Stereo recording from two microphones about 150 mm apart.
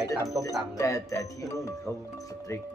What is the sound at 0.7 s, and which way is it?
Speech, 20° left (ahead or behind).